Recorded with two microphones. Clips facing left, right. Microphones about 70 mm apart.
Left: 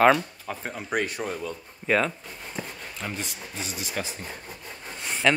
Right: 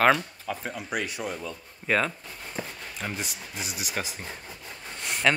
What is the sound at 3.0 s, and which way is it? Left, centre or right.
Speech, centre.